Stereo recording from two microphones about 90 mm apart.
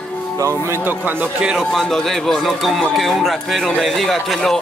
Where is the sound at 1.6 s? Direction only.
5° left (ahead or behind).